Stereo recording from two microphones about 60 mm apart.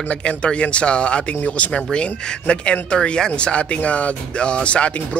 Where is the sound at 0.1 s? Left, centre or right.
Centre.